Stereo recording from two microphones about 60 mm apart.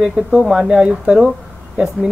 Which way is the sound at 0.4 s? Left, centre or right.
Centre.